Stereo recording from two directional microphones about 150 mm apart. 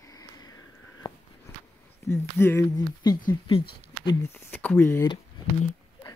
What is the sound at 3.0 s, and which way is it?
Speech, 30° left (ahead or behind).